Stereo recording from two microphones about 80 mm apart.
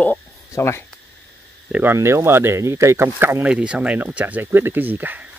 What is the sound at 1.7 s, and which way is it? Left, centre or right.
Speech, right.